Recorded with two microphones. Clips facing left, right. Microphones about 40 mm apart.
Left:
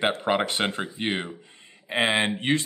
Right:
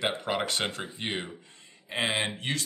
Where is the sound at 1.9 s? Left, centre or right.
Left.